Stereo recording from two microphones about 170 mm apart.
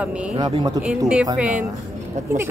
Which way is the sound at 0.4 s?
25° right (ahead or behind).